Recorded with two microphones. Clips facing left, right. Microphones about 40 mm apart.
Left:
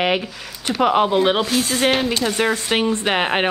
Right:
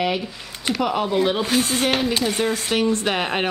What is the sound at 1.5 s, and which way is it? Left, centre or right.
Speech, right.